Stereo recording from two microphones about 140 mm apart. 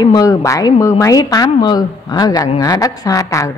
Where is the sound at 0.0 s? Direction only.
30° left (ahead or behind).